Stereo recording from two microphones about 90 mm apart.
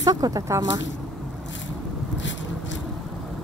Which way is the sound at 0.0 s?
45° right (ahead or behind).